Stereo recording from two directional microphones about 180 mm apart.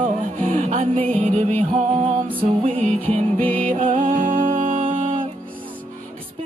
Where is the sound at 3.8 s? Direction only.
45° right (ahead or behind).